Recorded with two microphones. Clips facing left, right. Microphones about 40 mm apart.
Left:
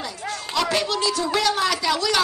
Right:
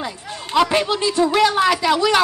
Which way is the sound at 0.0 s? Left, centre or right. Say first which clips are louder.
Right 1 dB; right.